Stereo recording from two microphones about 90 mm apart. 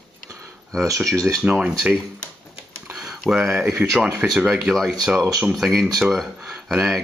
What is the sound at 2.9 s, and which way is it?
Speech, 5° right (ahead or behind).